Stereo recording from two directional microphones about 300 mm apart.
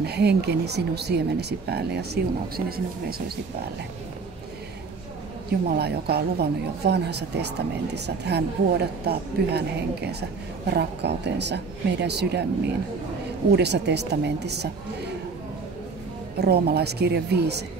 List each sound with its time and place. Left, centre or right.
0.0 s speech: right
5.8 s speech: right
16.3 s speech: right